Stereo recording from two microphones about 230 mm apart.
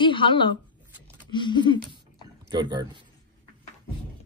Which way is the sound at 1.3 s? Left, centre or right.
Centre.